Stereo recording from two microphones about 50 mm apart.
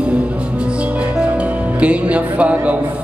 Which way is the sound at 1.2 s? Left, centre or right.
Right.